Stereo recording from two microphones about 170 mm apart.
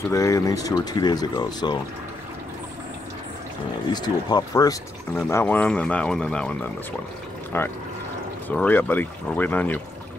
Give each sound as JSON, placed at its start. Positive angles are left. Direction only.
{"t": 0.1, "sound": "speech", "side_deg": 20}
{"t": 3.9, "sound": "speech", "side_deg": 25}
{"t": 5.3, "sound": "speech", "side_deg": 10}